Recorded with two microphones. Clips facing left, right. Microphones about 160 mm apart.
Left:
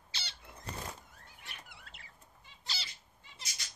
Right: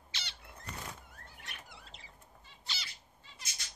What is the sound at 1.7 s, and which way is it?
Rodents, 60° left (ahead or behind).